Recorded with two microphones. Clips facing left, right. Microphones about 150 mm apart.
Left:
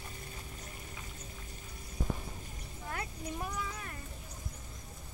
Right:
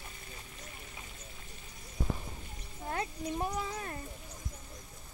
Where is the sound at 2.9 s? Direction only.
25° right (ahead or behind).